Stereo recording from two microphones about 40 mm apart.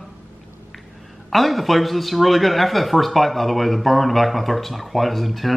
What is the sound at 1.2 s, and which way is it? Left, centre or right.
A man's voice, centre.